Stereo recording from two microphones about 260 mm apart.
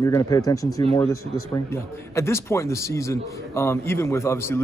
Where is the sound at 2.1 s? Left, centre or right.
Centre.